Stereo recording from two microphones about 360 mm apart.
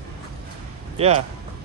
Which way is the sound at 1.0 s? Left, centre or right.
Centre.